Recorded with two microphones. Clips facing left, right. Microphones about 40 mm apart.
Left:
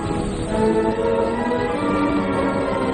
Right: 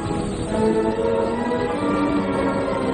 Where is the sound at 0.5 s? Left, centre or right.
Centre.